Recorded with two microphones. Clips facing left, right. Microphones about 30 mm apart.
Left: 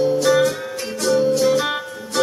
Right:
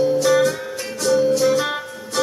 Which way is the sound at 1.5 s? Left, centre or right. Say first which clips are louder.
Left 1 dB; centre.